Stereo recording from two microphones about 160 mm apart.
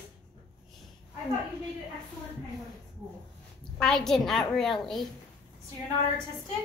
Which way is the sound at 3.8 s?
5° left (ahead or behind).